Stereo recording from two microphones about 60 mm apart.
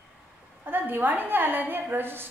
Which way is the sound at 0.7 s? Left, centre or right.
Right.